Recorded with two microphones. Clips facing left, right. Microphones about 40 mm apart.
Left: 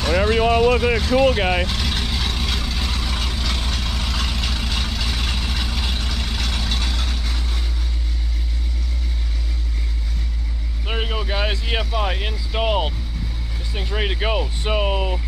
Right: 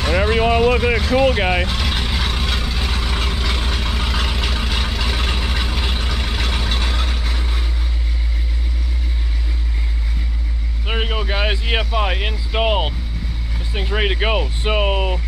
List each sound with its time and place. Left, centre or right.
0.0 s vehicle: right
10.9 s vehicle: centre
13.7 s speech: centre